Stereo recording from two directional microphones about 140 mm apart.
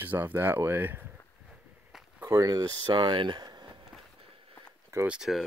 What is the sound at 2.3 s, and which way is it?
Speech, 25° right (ahead or behind).